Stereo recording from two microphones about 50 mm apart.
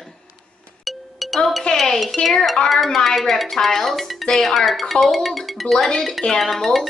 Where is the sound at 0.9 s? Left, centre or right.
Centre.